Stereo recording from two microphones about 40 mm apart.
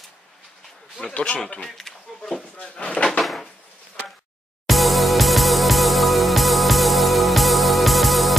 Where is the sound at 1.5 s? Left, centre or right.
Centre.